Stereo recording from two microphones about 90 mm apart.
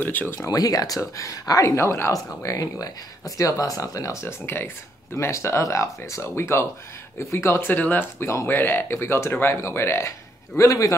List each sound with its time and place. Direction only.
0.0 s speech: 20° left (ahead or behind)
0.4 s speech: 40° left (ahead or behind)